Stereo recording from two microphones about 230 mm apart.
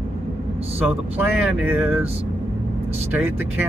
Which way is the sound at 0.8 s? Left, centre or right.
Centre.